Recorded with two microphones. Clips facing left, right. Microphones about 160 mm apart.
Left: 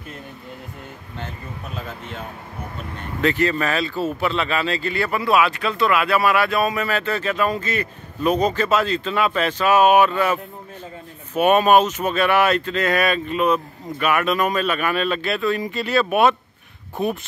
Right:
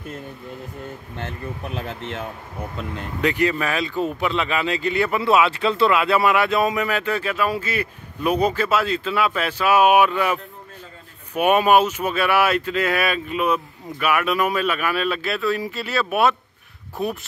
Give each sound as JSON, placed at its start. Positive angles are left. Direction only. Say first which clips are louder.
{"t": 1.7, "sound": "speech", "louder": "right 1 dB", "side_deg": -90}
{"t": 3.2, "sound": "speech", "louder": "left 1 dB", "side_deg": -15}